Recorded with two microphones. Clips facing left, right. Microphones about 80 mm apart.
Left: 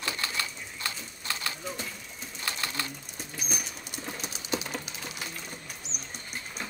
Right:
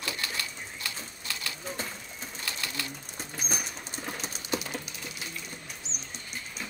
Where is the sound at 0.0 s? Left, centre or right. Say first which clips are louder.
Left 2 dB; left.